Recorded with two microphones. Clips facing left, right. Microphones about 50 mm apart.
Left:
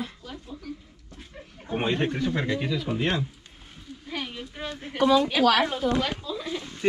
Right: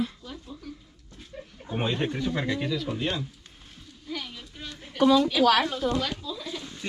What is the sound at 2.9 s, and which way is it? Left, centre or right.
Speech, left.